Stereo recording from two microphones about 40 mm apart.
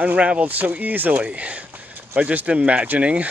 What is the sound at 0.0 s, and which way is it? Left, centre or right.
Speech, right.